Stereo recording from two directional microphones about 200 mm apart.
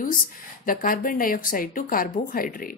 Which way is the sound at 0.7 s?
45° left (ahead or behind).